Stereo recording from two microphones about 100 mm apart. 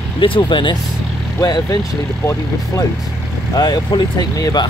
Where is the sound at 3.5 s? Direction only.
45° left (ahead or behind).